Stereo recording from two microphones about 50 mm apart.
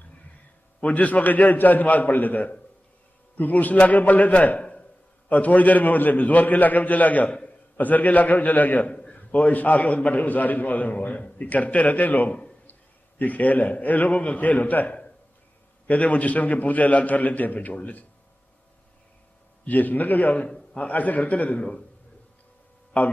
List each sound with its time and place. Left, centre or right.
0.7 s a man's voice: left
5.3 s a man's voice: left
7.2 s a man's voice: centre
7.7 s a man's voice: left
19.6 s a man's voice: left
22.9 s a man's voice: left